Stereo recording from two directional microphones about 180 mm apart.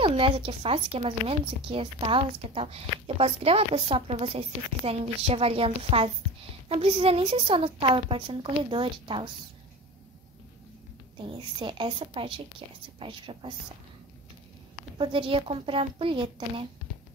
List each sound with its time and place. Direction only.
0.0 s a woman's voice: 30° right (ahead or behind)
11.1 s a woman's voice: 30° right (ahead or behind)
15.0 s a woman's voice: 30° right (ahead or behind)